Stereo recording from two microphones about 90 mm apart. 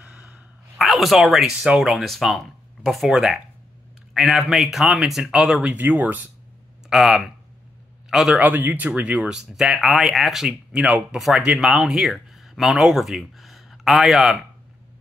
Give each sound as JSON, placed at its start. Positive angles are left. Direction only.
{"t": 0.0, "sound": "gasp", "side_deg": -15}
{"t": 0.7, "sound": "speech", "side_deg": 0}
{"t": 6.9, "sound": "a man's voice", "side_deg": -5}
{"t": 8.4, "sound": "speech", "side_deg": -20}